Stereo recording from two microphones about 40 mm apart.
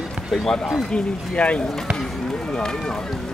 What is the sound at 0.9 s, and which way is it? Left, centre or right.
Speech, left.